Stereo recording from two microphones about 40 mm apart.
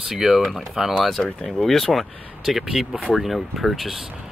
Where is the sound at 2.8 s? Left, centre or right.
Centre.